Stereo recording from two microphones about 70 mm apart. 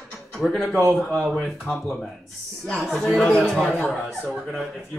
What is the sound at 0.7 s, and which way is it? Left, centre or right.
Speech, right.